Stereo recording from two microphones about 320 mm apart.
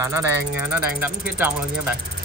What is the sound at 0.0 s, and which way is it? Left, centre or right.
Speech, centre.